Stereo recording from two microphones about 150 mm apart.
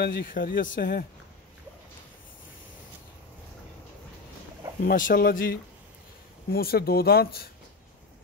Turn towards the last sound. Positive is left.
turn(degrees=90)